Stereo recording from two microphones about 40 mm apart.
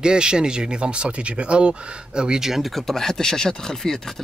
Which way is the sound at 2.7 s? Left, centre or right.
Centre.